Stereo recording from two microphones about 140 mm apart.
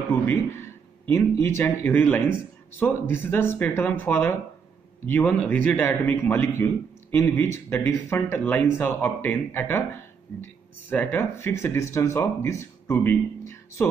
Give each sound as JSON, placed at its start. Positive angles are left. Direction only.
{"t": 1.0, "sound": "speech", "side_deg": 15}